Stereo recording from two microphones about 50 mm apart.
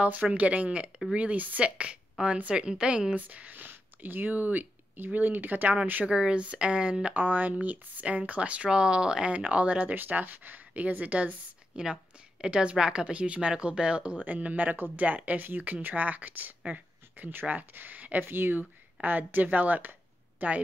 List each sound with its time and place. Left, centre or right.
0.0 s speech: right
1.6 s a woman's voice: right
3.2 s speech: right
6.0 s speech: centre
7.2 s speech: right
11.8 s speech: centre; by 18.3 s right
18.3 s speech: right